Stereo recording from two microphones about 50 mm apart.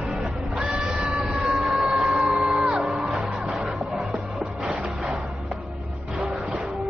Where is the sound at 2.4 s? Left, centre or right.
Centre.